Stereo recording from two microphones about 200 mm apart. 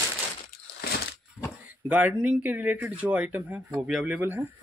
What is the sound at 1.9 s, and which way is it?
Speech, 5° right (ahead or behind).